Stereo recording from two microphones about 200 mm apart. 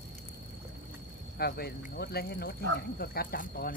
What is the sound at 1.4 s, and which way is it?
Cricket, 50° left (ahead or behind).